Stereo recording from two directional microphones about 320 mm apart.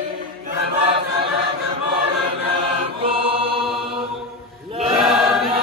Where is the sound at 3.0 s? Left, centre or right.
Centre.